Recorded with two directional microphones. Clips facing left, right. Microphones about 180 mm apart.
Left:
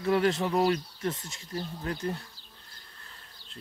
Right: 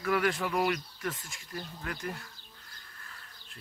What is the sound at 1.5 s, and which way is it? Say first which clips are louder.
Speech: left 5 dB; 35° left (ahead or behind).